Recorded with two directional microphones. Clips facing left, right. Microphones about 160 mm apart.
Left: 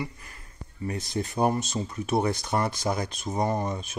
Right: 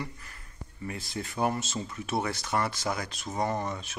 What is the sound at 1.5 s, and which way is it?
Speech, 15° left (ahead or behind).